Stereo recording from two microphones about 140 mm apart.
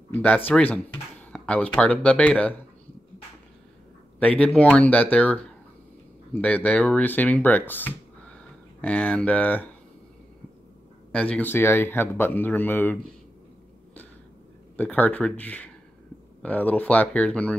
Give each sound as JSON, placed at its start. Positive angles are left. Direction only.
{"t": 0.1, "sound": "speech", "side_deg": 10}
{"t": 1.3, "sound": "a sound", "side_deg": 10}
{"t": 1.8, "sound": "speech", "side_deg": 10}
{"t": 4.2, "sound": "speech", "side_deg": 10}
{"t": 11.1, "sound": "speech", "side_deg": 10}
{"t": 14.8, "sound": "speech", "side_deg": 10}